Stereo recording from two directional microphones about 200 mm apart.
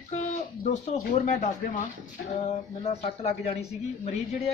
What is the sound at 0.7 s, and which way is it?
Speech, 40° left (ahead or behind).